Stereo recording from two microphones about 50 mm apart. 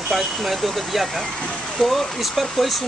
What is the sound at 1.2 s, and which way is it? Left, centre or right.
Speech, centre.